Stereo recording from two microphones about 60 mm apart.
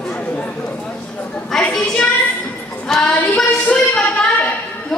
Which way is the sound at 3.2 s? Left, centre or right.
Centre.